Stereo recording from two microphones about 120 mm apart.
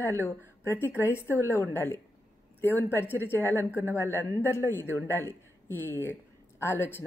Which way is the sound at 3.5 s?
15° right (ahead or behind).